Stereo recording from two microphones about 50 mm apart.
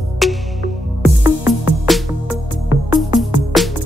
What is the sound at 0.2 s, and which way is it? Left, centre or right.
Music, centre.